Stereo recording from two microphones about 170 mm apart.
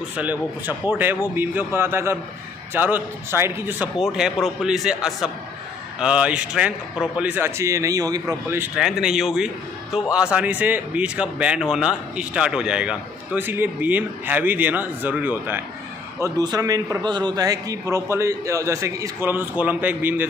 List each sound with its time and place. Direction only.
0.1 s a man's voice: 10° right (ahead or behind)
8.7 s a man's voice: 5° right (ahead or behind)
16.2 s a man's voice: 20° right (ahead or behind)